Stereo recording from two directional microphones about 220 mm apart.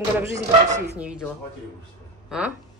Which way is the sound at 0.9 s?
5° right (ahead or behind).